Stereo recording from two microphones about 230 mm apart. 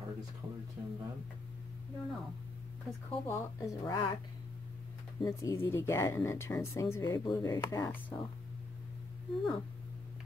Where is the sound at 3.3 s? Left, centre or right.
Centre.